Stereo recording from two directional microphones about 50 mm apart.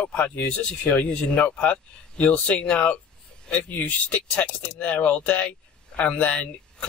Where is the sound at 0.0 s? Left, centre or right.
Left.